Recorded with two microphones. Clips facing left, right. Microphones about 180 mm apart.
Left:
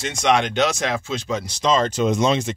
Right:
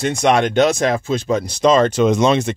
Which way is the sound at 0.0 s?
55° right (ahead or behind).